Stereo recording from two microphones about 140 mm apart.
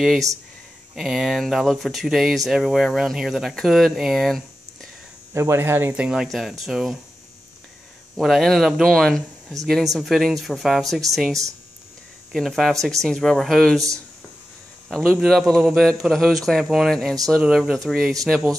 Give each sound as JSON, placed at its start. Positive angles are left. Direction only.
{"t": 0.9, "sound": "speech", "side_deg": 0}
{"t": 5.3, "sound": "speech", "side_deg": -20}
{"t": 6.0, "sound": "speech", "side_deg": 0}
{"t": 8.2, "sound": "speech", "side_deg": 0}
{"t": 14.9, "sound": "speech", "side_deg": 0}